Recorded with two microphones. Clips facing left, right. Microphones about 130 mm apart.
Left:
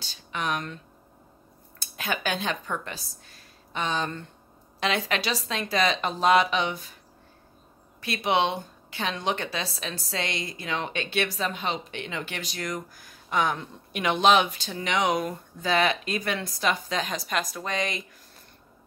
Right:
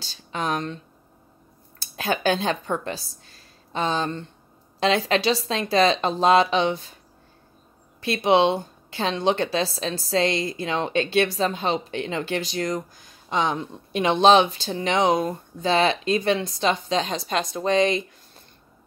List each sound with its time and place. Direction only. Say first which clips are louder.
0.0 s speech: right 3 dB; 30° right (ahead or behind)
1.8 s a woman's voice: right 6 dB; 30° right (ahead or behind)
8.0 s a woman's voice: right 6 dB; 30° right (ahead or behind)